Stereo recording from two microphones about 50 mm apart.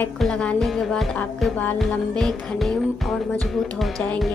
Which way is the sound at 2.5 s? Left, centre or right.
Centre.